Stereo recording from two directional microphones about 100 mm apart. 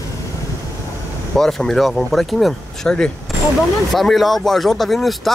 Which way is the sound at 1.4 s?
5° left (ahead or behind).